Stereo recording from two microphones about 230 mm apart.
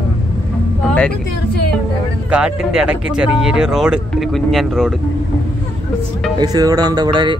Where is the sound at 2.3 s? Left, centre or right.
Centre.